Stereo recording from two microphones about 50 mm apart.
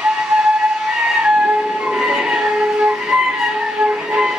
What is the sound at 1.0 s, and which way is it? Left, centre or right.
Train, centre.